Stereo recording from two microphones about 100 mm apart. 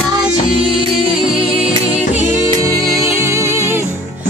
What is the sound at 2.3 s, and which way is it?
Music, 30° right (ahead or behind).